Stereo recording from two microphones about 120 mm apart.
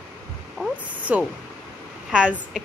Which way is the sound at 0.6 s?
10° left (ahead or behind).